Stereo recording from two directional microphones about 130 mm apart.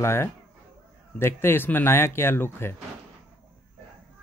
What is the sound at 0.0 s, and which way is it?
Speech, 20° left (ahead or behind).